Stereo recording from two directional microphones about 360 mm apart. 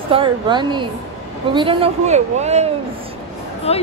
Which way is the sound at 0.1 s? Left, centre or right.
Centre.